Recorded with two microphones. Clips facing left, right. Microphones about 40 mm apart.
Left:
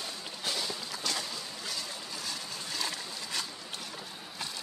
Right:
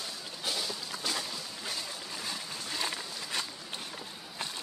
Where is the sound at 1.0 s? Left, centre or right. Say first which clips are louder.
Even; centre.